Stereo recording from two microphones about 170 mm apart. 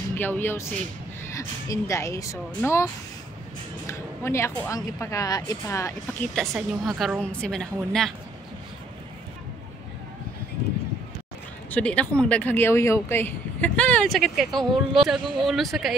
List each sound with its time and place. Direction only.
0.1 s speech: 10° left (ahead or behind)
3.8 s speech: 15° left (ahead or behind)
6.3 s a woman's voice: centre (ahead or behind)
11.7 s speech: 5° left (ahead or behind)